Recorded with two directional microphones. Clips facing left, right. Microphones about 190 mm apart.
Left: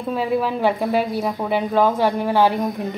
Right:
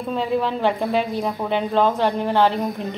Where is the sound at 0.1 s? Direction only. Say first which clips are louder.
Left 1 dB; 10° left (ahead or behind).